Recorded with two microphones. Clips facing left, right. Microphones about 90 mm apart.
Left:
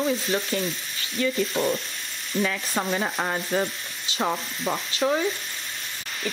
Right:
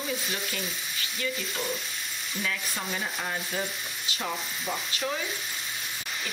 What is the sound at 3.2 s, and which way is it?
Sizzle, 60° left (ahead or behind).